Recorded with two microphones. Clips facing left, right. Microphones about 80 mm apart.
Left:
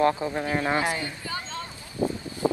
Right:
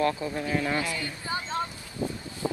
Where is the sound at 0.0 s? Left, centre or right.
Left.